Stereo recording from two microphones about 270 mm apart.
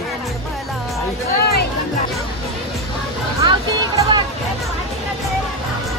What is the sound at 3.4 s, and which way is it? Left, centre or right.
Speech, centre.